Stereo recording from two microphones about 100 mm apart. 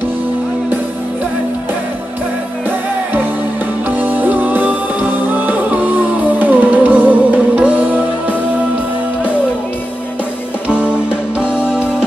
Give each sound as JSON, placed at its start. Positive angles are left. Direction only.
{"t": 3.9, "sound": "music", "side_deg": -15}
{"t": 10.7, "sound": "music", "side_deg": -10}